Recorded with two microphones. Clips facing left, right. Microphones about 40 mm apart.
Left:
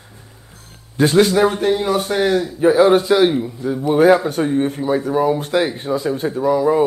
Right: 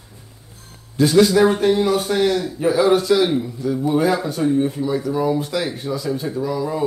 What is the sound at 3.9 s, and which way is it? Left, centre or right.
Speech, left.